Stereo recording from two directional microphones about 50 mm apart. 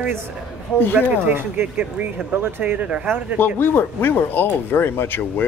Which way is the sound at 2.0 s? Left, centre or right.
Right.